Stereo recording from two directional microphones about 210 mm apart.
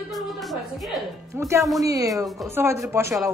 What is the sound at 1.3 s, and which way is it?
Speech, 10° right (ahead or behind).